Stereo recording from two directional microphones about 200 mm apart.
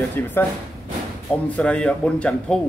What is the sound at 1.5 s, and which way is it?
Speech, 5° left (ahead or behind).